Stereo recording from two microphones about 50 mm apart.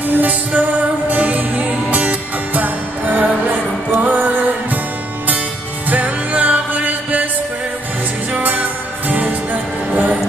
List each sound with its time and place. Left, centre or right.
0.0 s music: right
5.9 s music: right
8.3 s music: right